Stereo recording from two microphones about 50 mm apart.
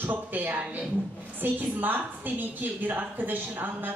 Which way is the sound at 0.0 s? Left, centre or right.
Right.